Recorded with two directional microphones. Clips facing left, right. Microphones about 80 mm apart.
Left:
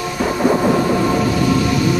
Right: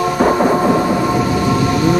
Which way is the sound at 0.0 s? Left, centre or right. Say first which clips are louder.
Right 5 dB; right.